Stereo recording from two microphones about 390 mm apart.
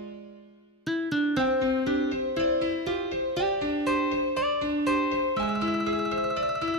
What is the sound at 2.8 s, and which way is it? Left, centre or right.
Music, centre.